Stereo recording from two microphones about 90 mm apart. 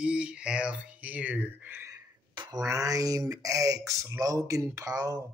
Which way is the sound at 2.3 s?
55° right (ahead or behind).